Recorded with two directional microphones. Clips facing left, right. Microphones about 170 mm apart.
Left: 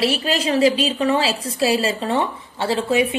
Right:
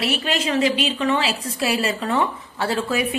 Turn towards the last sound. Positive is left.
turn(degrees=25)  # may be behind; listen again after turning